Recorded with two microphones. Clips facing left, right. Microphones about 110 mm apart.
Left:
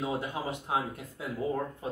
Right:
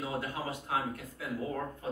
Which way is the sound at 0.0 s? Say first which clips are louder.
Left 3 dB; 20° left (ahead or behind).